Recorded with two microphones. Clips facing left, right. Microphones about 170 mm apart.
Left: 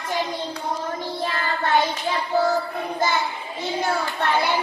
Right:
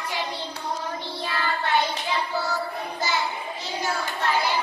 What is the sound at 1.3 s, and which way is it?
Child singing, 45° left (ahead or behind).